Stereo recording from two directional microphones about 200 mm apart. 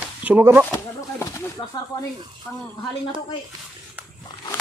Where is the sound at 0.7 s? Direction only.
15° left (ahead or behind).